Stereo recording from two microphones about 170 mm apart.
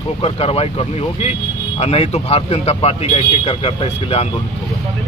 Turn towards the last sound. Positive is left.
turn(degrees=35)  # may be behind; listen again after turning